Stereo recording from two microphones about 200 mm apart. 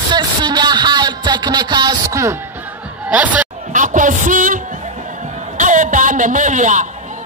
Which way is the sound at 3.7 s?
40° right (ahead or behind).